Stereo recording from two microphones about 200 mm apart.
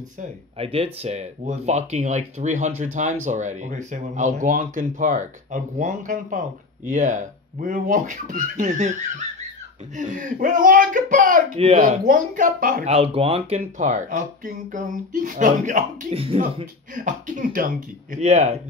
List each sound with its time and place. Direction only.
0.2 s speech: 30° right (ahead or behind); by 12.9 s 45° right (ahead or behind)
12.9 s speech: 30° right (ahead or behind)
16.9 s speech: 40° right (ahead or behind)